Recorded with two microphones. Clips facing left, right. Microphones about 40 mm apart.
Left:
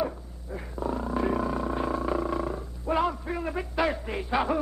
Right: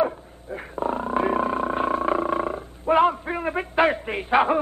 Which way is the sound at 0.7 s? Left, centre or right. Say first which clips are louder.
Right 5 dB; right.